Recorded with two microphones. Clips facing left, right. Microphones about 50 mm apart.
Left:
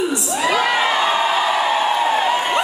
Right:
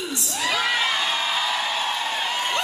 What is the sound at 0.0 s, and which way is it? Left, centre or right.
Whoop, centre.